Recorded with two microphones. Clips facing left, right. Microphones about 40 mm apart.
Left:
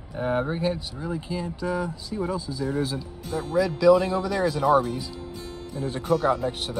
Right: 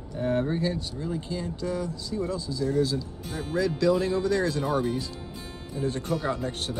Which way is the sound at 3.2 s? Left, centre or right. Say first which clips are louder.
Left 4 dB; centre.